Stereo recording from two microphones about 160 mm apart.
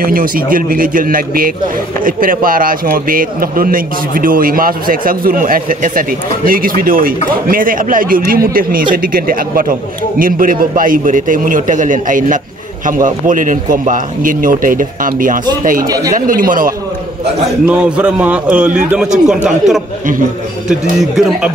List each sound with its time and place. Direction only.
0.0 s a man's voice: 65° right (ahead or behind)
15.9 s speech: 20° right (ahead or behind)
16.2 s a man's voice: 60° right (ahead or behind)
17.6 s a man's voice: 5° right (ahead or behind)